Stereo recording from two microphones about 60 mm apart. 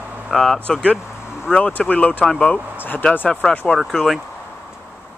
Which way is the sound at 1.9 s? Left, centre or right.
Left.